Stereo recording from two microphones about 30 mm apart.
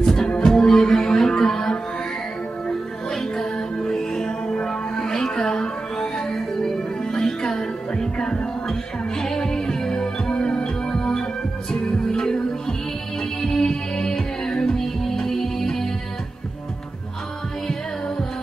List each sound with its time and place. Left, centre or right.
0.0 s music: left